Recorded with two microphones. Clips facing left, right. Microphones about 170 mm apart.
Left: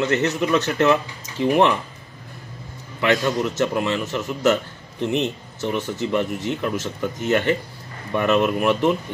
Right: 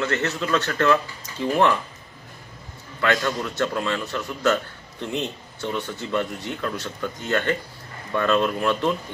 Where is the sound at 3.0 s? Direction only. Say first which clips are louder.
Left 3 dB; 20° left (ahead or behind).